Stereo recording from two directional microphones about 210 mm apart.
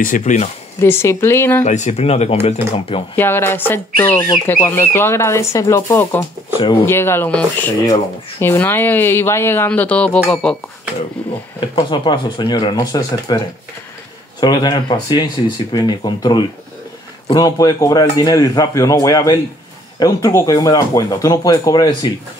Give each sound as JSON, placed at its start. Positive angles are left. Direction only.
{"t": 0.0, "sound": "speech", "side_deg": 40}
{"t": 0.7, "sound": "speech", "side_deg": 10}
{"t": 1.6, "sound": "speech", "side_deg": 35}
{"t": 3.2, "sound": "speech", "side_deg": 10}
{"t": 4.3, "sound": "speech", "side_deg": 20}
{"t": 11.2, "sound": "a sound", "side_deg": 5}
{"t": 11.7, "sound": "speech", "side_deg": 20}
{"t": 14.4, "sound": "speech", "side_deg": 20}